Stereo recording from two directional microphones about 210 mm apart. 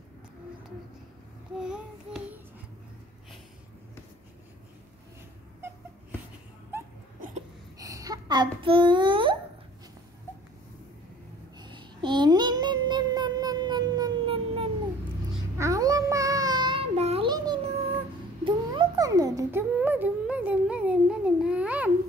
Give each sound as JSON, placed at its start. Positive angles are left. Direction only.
{"t": 1.6, "sound": "babbling", "side_deg": -5}
{"t": 7.8, "sound": "a child's voice", "side_deg": -15}
{"t": 11.5, "sound": "child singing", "side_deg": -20}
{"t": 15.3, "sound": "child singing", "side_deg": -15}
{"t": 18.4, "sound": "a sound", "side_deg": -20}